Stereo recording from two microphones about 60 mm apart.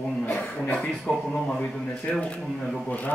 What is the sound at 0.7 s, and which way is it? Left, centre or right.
Speech, centre.